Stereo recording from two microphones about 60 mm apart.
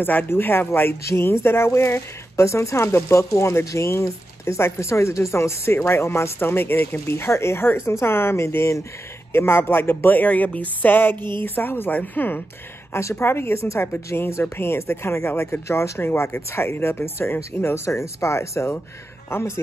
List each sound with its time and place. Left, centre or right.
0.0 s speech: left
12.9 s speech: left
16.0 s speech: left
16.5 s speech: left